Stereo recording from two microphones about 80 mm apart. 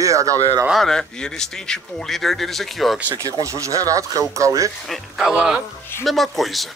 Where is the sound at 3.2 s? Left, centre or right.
Right.